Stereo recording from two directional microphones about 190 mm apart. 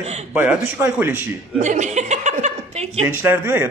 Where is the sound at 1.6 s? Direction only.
40° right (ahead or behind).